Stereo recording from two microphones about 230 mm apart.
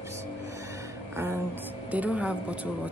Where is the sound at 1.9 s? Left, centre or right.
Centre.